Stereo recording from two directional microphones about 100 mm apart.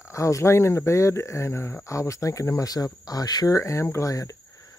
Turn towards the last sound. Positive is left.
turn(degrees=35)  # may be behind; listen again after turning